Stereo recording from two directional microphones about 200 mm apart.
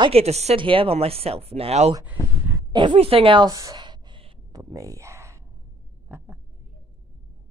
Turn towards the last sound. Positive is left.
turn(degrees=-10)  # may be behind; listen again after turning